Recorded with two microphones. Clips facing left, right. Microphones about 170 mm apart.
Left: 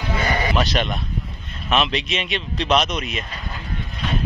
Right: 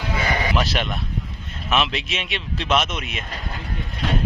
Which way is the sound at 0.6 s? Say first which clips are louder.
Left 2 dB; 5° right (ahead or behind).